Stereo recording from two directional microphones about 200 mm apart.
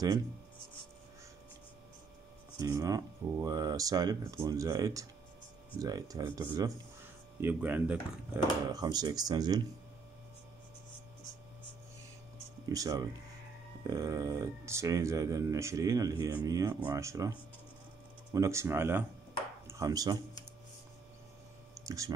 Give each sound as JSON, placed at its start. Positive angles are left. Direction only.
{"t": 2.6, "sound": "speech", "side_deg": -15}
{"t": 8.7, "sound": "speech", "side_deg": -20}
{"t": 12.6, "sound": "speech", "side_deg": -20}
{"t": 21.7, "sound": "a sound", "side_deg": -15}